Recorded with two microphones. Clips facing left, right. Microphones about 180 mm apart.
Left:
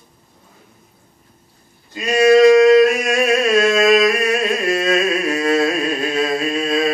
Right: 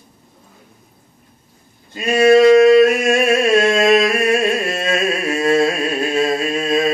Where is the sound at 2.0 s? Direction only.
25° right (ahead or behind).